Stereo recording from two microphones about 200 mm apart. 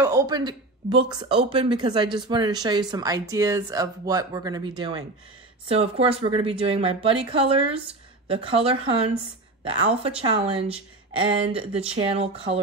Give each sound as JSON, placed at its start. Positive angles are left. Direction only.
{"t": 0.0, "sound": "a woman's voice", "side_deg": -15}